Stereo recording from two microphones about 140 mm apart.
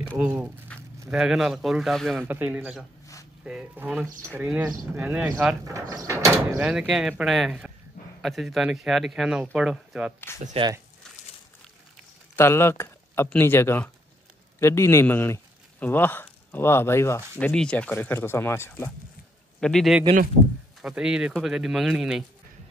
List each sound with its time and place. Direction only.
0.2 s speech: 10° right (ahead or behind)
0.7 s a sound: 10° left (ahead or behind)
1.1 s speech: 5° right (ahead or behind)
2.1 s speech: 15° right (ahead or behind)
5.7 s speech: 25° right (ahead or behind)
6.6 s speech: 5° right (ahead or behind)
10.6 s speech: 40° right (ahead or behind)
12.4 s a man's voice: 15° left (ahead or behind)
19.6 s speech: 5° left (ahead or behind)